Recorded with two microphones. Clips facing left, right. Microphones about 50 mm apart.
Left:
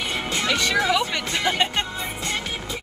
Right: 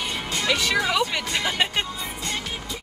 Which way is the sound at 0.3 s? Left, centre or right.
Left.